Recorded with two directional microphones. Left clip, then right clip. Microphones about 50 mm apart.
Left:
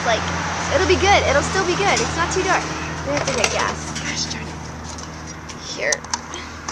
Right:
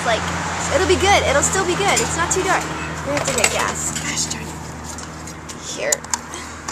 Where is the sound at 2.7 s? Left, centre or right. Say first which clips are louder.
Right 1 dB; left.